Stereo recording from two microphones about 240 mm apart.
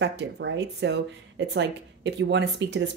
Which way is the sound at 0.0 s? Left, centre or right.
Right.